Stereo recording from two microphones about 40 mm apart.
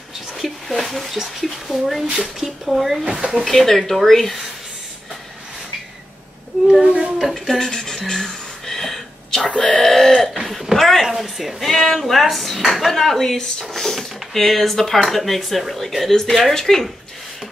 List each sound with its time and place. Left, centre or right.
0.3 s a sound: centre
1.1 s speech: centre
3.1 s speech: centre
3.4 s speech: centre
6.7 s a child's voice: right
7.3 s a sound: centre
11.6 s speech: centre